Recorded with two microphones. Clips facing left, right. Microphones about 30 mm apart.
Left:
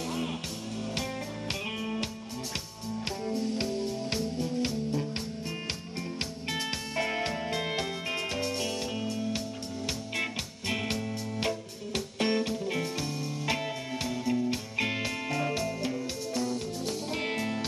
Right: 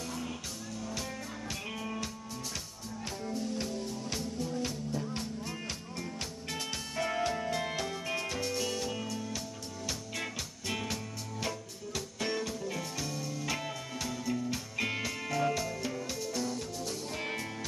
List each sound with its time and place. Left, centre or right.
3.3 s music: left
7.0 s music: left
16.5 s music: left